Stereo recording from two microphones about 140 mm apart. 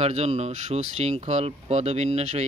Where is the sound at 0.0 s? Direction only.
50° right (ahead or behind).